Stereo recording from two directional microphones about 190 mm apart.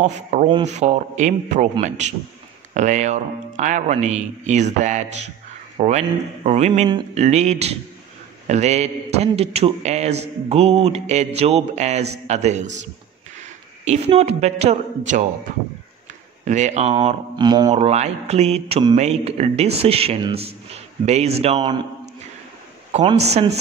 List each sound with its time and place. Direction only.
0.0 s a man's voice: 40° right (ahead or behind)
16.4 s a man's voice: 40° right (ahead or behind); by 17.7 s 20° right (ahead or behind)
17.7 s a man's voice: 35° right (ahead or behind)
23.0 s a man's voice: 35° right (ahead or behind)